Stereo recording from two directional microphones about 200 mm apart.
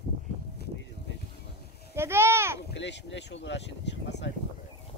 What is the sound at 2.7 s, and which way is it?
Speech, 60° left (ahead or behind).